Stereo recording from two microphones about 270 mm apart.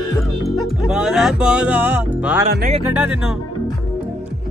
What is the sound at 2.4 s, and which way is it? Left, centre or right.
Speech, right.